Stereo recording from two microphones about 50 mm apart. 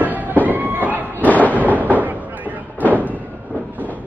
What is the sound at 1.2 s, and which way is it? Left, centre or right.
Dog, left.